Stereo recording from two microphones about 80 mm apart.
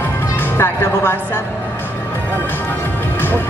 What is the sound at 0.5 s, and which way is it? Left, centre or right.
Music, left.